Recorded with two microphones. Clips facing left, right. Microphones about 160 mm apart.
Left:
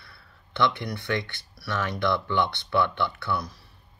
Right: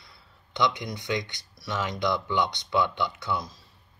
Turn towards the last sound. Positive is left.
turn(degrees=-20)  # may be behind; listen again after turning